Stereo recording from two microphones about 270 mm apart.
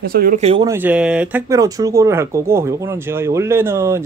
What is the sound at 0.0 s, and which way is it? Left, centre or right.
Speech, right.